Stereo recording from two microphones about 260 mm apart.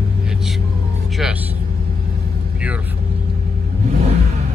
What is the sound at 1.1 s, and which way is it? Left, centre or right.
Speech, centre.